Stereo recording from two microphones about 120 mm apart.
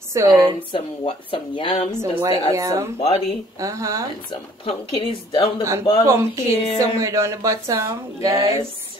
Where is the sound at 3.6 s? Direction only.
25° right (ahead or behind).